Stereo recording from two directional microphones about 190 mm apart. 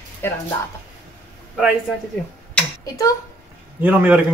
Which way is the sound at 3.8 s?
10° right (ahead or behind).